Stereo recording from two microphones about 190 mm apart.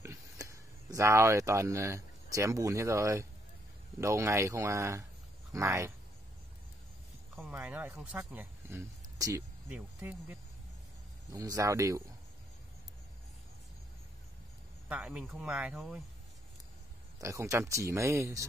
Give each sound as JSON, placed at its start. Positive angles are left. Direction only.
{"t": 0.0, "sound": "speech", "side_deg": -15}
{"t": 7.3, "sound": "speech", "side_deg": -10}
{"t": 14.9, "sound": "speech", "side_deg": -5}
{"t": 17.2, "sound": "speech", "side_deg": -15}